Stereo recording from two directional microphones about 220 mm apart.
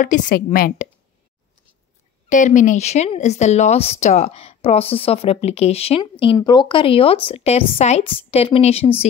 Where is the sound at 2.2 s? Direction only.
35° left (ahead or behind).